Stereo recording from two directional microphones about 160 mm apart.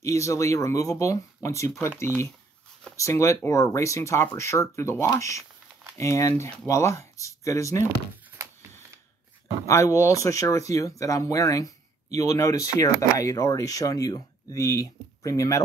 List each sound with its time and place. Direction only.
0.0 s speech: 20° left (ahead or behind)
8.4 s a sound: 20° right (ahead or behind)
9.7 s speech: 20° left (ahead or behind)